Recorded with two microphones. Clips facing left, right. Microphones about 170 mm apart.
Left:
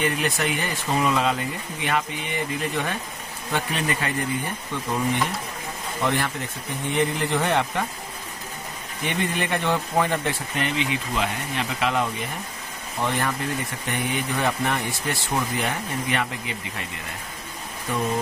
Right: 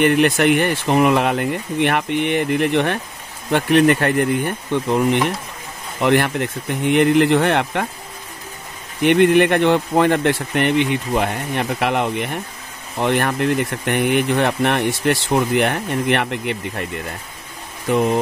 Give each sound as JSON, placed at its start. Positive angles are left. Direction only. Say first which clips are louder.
{"t": 0.0, "sound": "speech", "louder": "right 10 dB", "side_deg": -70}
{"t": 9.0, "sound": "speech", "louder": "right 14 dB", "side_deg": -70}